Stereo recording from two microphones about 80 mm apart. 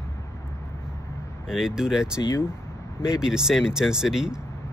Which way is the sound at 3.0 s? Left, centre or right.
Centre.